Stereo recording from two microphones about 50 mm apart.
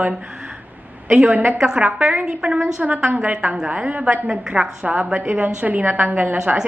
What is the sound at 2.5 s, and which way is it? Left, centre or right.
Speech, centre.